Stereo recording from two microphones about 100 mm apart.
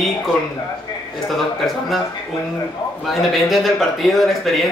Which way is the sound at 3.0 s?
Centre (ahead or behind).